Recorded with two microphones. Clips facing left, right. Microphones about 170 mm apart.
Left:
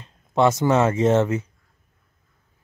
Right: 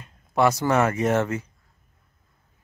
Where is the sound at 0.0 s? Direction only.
25° left (ahead or behind).